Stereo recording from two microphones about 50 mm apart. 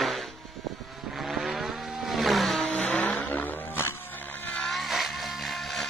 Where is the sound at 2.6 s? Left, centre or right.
Left.